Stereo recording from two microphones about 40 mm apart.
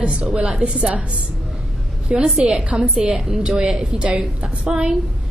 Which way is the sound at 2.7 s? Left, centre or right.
Right.